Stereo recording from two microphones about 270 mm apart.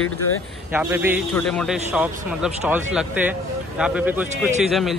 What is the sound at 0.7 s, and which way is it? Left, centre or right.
Speech, centre.